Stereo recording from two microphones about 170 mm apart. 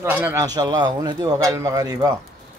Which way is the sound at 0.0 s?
10° right (ahead or behind).